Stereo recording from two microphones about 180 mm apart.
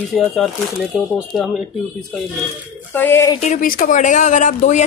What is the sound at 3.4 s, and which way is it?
Speech, 45° left (ahead or behind).